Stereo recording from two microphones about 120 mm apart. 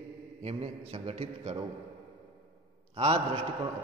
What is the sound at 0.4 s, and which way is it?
A man's voice, 55° right (ahead or behind).